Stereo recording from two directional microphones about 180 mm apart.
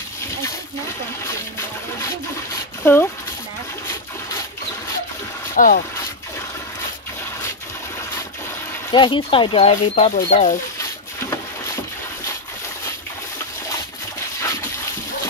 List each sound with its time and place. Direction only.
2.8 s speech: 10° left (ahead or behind)
5.6 s speech: 50° left (ahead or behind)
8.9 s speech: 25° left (ahead or behind); by 10.6 s 45° left (ahead or behind)